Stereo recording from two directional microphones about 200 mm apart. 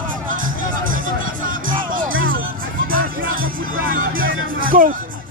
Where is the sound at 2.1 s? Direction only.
80° right.